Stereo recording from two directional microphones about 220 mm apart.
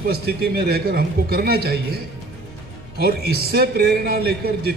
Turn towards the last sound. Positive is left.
turn(degrees=-45)  # may be behind; listen again after turning